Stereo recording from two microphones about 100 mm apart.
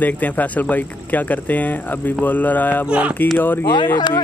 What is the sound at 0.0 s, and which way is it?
Speech, 15° left (ahead or behind).